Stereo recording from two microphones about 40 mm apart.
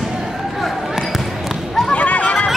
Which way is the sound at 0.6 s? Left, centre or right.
Centre.